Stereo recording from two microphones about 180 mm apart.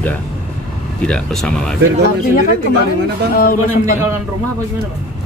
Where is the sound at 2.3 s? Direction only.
50° left (ahead or behind).